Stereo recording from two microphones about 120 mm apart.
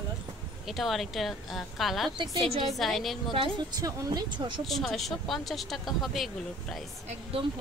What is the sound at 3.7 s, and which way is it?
Speech, 35° right (ahead or behind).